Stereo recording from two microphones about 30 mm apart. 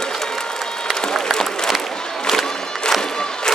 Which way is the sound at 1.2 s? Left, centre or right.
Centre.